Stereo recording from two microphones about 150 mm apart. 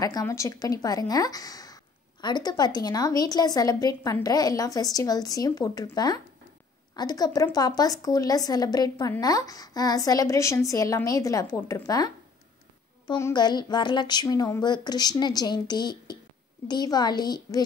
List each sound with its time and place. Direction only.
0.0 s a woman's voice: 20° left (ahead or behind)
13.2 s a woman's voice: 30° left (ahead or behind)